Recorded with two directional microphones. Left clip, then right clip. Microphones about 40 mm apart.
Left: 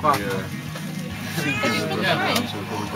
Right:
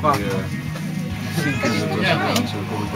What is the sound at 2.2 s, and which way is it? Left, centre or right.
Speech, centre.